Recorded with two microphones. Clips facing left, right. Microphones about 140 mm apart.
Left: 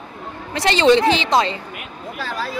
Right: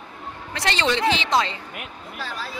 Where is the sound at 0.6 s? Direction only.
20° left (ahead or behind).